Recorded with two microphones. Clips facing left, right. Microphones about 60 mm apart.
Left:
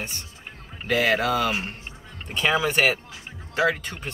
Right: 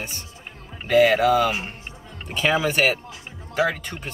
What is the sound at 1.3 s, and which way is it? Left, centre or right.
Speech, centre.